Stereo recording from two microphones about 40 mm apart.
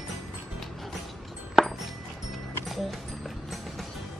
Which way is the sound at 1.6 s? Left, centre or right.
Centre.